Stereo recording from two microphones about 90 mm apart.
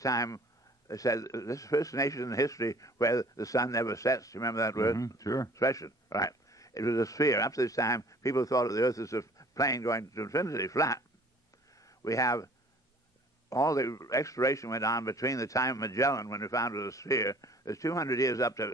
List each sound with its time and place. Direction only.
0.0 s a man's voice: 40° left (ahead or behind)
13.5 s a man's voice: 40° left (ahead or behind)